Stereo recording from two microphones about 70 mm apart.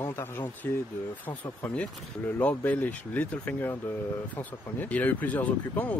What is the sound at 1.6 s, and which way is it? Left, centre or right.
Speech, centre.